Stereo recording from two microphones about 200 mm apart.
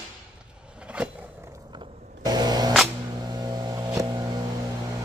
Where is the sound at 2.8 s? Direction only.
20° right (ahead or behind).